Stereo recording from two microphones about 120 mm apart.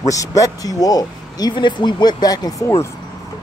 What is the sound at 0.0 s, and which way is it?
Speech, 30° left (ahead or behind).